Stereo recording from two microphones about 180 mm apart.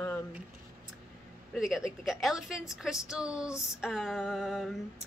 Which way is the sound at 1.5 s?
Centre (ahead or behind).